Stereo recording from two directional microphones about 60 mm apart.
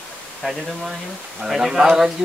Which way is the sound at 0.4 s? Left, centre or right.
Centre.